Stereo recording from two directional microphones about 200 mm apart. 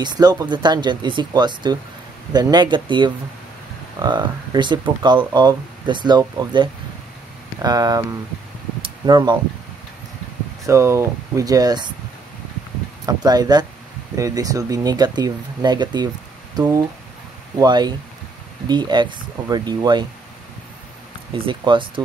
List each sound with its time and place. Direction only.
0.0 s speech: 20° right (ahead or behind)
10.7 s speech: 15° right (ahead or behind)
13.0 s speech: 20° right (ahead or behind)
21.5 s speech: 25° right (ahead or behind)